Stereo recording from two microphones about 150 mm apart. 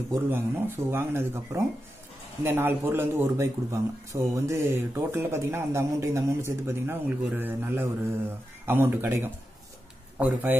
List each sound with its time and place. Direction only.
0.1 s a man's voice: 15° right (ahead or behind)